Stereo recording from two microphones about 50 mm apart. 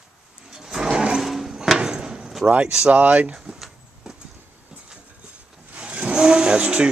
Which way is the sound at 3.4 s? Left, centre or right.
Centre.